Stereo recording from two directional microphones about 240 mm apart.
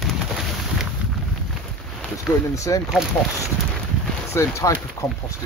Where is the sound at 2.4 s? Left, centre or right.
Centre.